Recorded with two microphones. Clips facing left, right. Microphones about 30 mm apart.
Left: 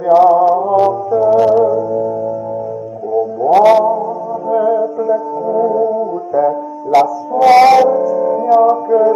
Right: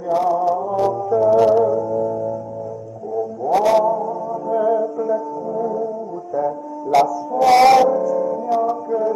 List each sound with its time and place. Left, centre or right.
0.0 s music: left
1.1 s music: centre
3.4 s music: left
3.7 s music: centre
5.5 s music: left
7.6 s music: centre; by 9.1 s left